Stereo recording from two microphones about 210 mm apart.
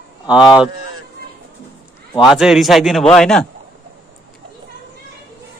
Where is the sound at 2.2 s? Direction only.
Centre (ahead or behind).